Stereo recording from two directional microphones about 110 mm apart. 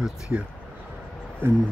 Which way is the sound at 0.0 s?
10° right (ahead or behind).